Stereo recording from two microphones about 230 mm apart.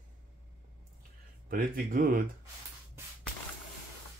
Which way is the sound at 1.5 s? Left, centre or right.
Right.